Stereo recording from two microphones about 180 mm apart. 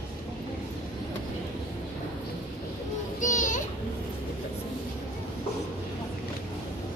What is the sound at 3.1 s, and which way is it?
Children playing, 45° left (ahead or behind).